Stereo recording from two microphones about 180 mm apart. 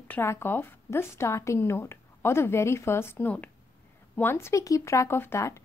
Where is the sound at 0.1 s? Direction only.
15° left (ahead or behind).